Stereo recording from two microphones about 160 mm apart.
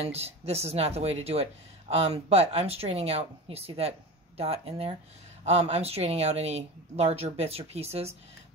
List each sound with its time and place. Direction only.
0.0 s speech: 40° right (ahead or behind)